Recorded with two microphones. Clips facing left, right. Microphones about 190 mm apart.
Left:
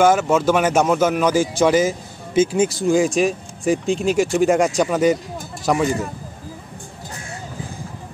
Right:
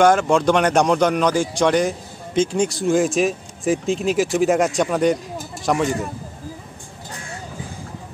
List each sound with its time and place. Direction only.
0.0 s speech: 5° left (ahead or behind)